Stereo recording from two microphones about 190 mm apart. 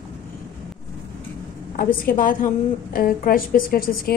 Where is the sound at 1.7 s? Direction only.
45° left (ahead or behind).